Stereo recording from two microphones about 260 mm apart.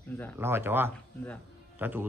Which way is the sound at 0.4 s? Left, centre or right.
Centre.